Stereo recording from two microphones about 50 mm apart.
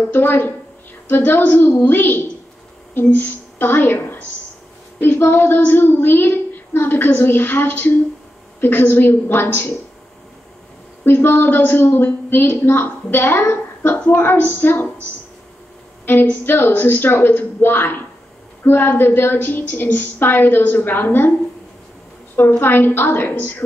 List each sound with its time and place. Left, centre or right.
0.1 s a woman's voice: left
11.1 s speech: left
16.4 s speech: left
22.3 s speech: left